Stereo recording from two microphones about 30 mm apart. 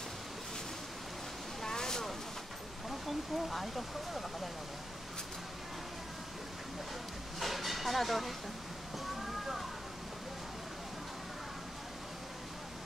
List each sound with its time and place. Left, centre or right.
1.6 s a sound: centre
2.9 s speech: centre
7.3 s train: centre